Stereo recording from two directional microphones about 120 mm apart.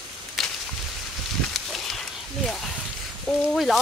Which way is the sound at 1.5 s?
Centre (ahead or behind).